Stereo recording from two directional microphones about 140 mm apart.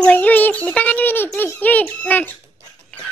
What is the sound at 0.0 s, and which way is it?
Child singing, 10° left (ahead or behind).